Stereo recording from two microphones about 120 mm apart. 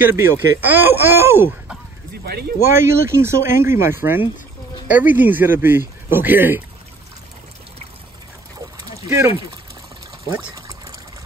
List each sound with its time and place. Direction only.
0.0 s speech: 20° right (ahead or behind)
2.6 s speech: 20° right (ahead or behind)
9.0 s speech: 25° right (ahead or behind)
10.3 s a sound: 25° right (ahead or behind)